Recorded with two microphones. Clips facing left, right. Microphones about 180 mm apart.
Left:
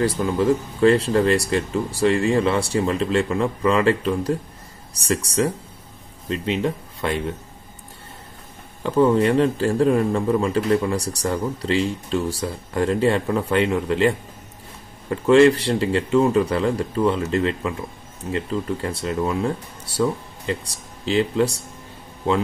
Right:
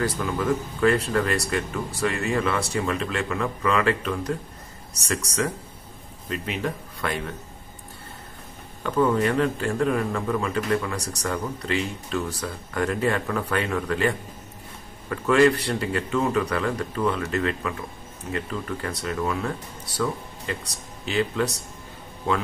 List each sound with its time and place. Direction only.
0.0 s speech: 30° left (ahead or behind)
8.8 s speech: 25° left (ahead or behind)